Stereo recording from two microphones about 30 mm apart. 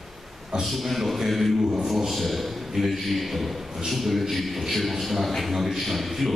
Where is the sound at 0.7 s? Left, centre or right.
Centre.